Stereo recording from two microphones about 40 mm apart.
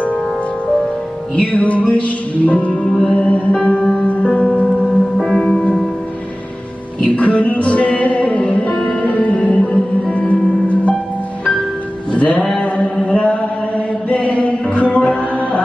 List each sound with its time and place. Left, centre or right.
1.3 s music: left
2.7 s music: centre
3.0 s music: left
5.1 s music: centre
5.5 s music: left
7.2 s music: left
9.0 s music: left
12.2 s music: left
12.5 s mantra: left
12.9 s chant: left